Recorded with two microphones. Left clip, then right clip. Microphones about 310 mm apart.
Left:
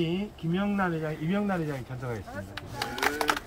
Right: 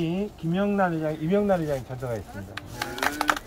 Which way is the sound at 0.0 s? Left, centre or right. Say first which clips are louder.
Right 2 dB; centre.